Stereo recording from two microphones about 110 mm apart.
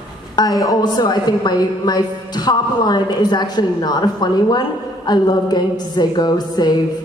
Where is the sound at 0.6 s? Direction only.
35° left (ahead or behind).